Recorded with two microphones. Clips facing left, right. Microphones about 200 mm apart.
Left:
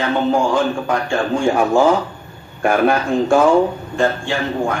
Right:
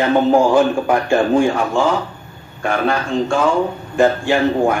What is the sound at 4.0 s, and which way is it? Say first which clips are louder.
Speech: right 5 dB; 15° right (ahead or behind).